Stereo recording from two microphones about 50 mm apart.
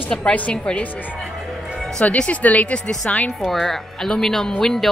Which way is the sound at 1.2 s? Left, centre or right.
Centre.